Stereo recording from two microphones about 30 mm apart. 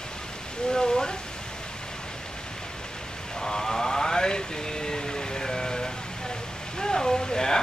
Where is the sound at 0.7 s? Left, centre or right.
Left.